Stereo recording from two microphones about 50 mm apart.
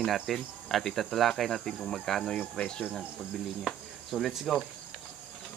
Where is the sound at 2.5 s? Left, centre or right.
Centre.